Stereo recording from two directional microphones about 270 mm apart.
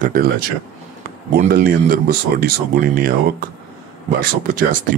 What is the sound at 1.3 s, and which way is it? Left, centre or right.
Speech, right.